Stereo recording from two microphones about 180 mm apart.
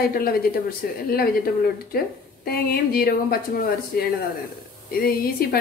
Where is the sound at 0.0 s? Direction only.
55° left (ahead or behind).